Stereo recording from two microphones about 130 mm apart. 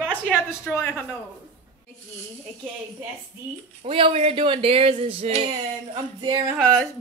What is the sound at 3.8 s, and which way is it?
Speech, 45° right (ahead or behind).